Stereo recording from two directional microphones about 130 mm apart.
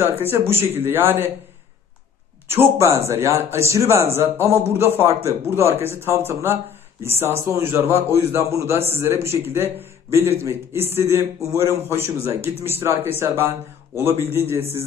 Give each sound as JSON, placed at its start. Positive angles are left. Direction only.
{"t": 0.3, "sound": "speech", "side_deg": -15}
{"t": 2.4, "sound": "speech", "side_deg": -15}